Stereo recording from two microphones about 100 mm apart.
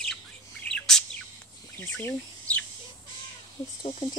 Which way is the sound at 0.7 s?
5° left (ahead or behind).